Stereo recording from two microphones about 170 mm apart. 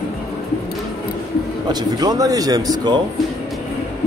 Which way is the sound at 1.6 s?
20° right (ahead or behind).